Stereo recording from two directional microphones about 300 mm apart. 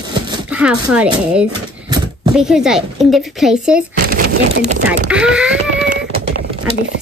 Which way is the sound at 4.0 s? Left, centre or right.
Right.